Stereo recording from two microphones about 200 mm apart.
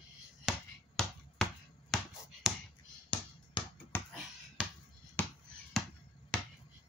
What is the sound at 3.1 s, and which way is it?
Finger snapping, 25° left (ahead or behind).